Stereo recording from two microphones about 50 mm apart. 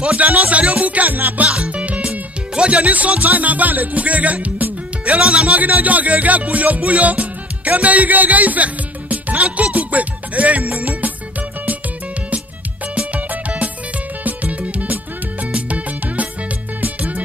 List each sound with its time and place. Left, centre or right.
0.0 s music: right
1.5 s speech: right
12.9 s music: right